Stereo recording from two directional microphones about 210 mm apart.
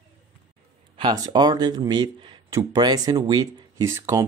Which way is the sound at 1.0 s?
20° right (ahead or behind).